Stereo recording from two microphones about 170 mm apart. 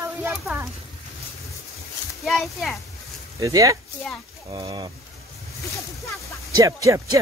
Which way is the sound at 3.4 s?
20° right (ahead or behind).